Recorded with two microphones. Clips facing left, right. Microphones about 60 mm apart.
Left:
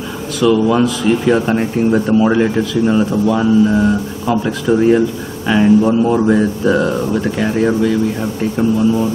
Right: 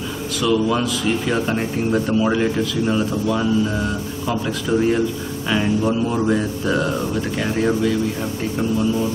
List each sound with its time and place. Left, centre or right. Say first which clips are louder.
0.4 s speech: left 7 dB; centre